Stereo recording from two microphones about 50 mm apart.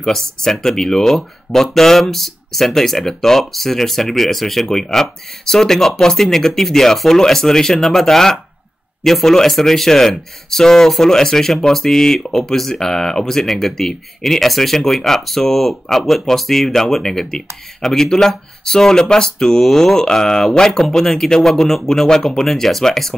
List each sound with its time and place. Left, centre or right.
0.0 s speech: centre